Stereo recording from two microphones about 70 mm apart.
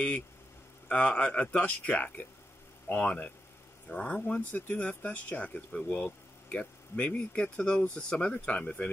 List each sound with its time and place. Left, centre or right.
0.8 s speech: centre